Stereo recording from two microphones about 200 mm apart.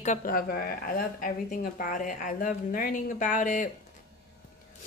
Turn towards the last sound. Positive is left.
turn(degrees=40)  # may be behind; listen again after turning